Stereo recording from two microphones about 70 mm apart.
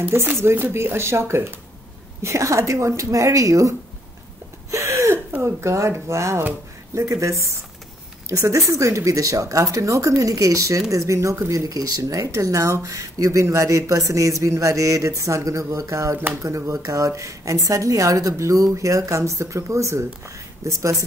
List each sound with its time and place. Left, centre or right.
0.4 s speech: right
4.6 s a sound: right
5.4 s speech: right